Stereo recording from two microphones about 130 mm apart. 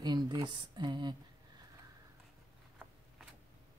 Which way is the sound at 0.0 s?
35° right (ahead or behind).